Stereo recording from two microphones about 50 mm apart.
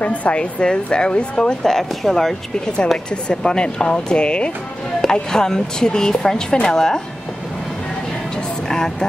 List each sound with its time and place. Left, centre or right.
0.0 s speech: left; by 7.0 s centre
8.4 s vehicle: centre